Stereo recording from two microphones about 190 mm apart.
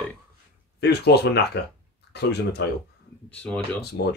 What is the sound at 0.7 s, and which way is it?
Speech, 60° left (ahead or behind).